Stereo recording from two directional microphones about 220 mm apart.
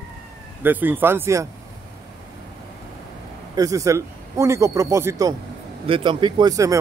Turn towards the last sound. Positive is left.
turn(degrees=-15)  # may be behind; listen again after turning